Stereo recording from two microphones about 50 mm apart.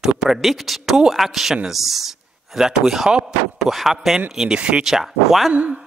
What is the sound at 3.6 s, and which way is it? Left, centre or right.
Speech, centre.